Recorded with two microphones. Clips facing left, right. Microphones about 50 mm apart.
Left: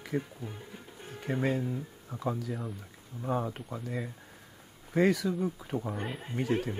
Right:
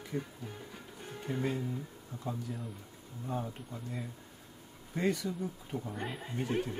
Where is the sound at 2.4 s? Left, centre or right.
Left.